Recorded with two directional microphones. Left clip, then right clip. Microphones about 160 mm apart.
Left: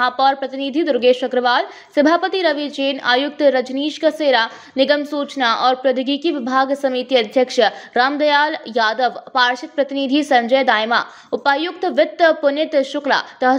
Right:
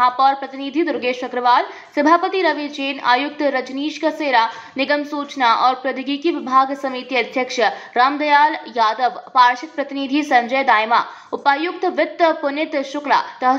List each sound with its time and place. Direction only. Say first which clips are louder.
0.0 s a woman's voice: right 1 dB; 45° left (ahead or behind)